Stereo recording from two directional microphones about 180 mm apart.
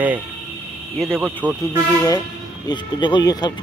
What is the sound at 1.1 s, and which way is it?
Speech, 10° right (ahead or behind).